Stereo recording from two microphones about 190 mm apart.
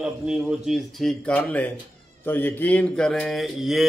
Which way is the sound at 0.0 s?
5° right (ahead or behind).